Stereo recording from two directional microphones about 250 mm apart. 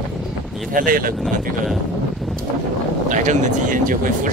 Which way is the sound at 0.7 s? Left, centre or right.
Right.